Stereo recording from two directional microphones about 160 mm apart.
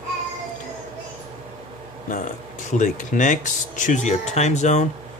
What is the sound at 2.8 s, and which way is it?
Speech, 50° left (ahead or behind).